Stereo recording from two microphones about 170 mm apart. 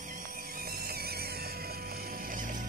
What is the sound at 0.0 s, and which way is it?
Music, 50° right (ahead or behind).